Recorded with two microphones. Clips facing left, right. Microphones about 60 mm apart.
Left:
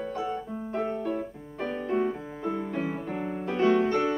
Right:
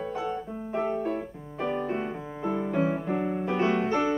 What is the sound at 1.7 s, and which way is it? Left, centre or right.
Music, right.